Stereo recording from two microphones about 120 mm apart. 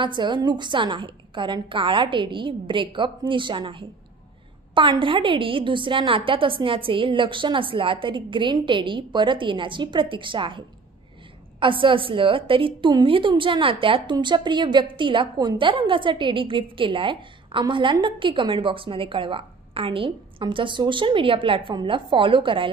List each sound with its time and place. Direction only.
0.0 s a woman's voice: 40° right (ahead or behind)
11.6 s a woman's voice: 45° right (ahead or behind)